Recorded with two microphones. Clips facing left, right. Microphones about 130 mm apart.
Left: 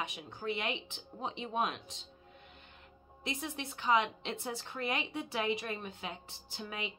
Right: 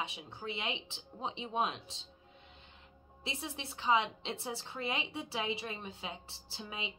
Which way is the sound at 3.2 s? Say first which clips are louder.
Left 3 dB; 25° right (ahead or behind).